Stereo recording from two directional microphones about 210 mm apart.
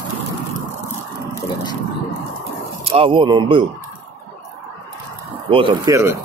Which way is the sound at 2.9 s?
25° right (ahead or behind).